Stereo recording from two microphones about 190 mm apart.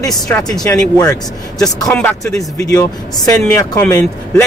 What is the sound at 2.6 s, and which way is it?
Speech, 20° left (ahead or behind).